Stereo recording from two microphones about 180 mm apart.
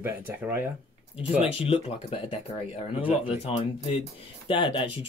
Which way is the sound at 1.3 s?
30° left (ahead or behind).